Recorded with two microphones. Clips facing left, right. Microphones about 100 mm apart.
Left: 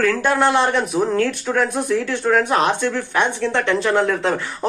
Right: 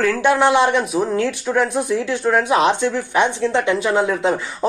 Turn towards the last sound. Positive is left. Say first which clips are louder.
# right 2 dB
turn(degrees=-15)  # may be behind; listen again after turning